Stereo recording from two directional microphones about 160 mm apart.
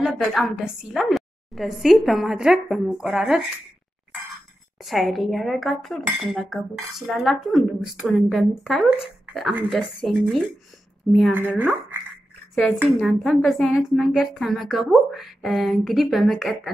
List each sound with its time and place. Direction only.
0.0 s speech: centre (ahead or behind)
4.7 s speech: centre (ahead or behind)
11.3 s speech: 10° right (ahead or behind)